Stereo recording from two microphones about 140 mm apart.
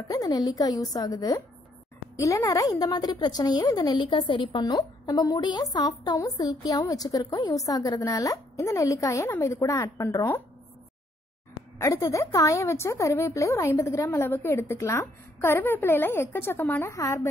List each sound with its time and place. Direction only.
0.1 s a woman's voice: 25° left (ahead or behind)
11.8 s a woman's voice: 25° left (ahead or behind)